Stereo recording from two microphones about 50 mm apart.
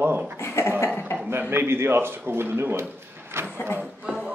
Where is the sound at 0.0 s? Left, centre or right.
Right.